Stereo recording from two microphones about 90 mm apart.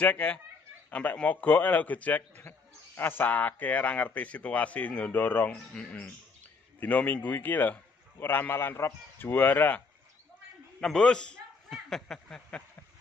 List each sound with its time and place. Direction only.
0.0 s speech: 15° left (ahead or behind)
5.5 s a man's voice: 10° left (ahead or behind)
10.8 s speech: 10° left (ahead or behind)